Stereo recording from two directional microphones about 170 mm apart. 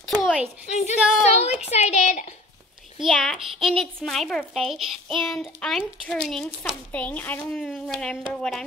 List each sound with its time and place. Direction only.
0.0 s a sound: centre (ahead or behind)
0.7 s speech: 45° left (ahead or behind)
0.9 s a child's voice: 5° right (ahead or behind)
1.2 s a woman's voice: 40° left (ahead or behind)
3.0 s a child's voice: centre (ahead or behind)